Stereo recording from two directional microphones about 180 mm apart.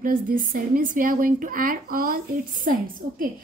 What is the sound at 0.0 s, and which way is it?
Speech, 50° right (ahead or behind).